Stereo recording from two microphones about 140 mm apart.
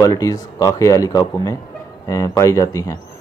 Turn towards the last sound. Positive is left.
turn(degrees=25)  # may be behind; listen again after turning